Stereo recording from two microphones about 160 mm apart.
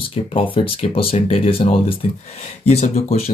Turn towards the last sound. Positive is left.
turn(degrees=40)  # may be behind; listen again after turning